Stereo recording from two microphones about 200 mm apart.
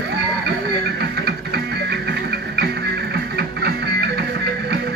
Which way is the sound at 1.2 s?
55° right (ahead or behind).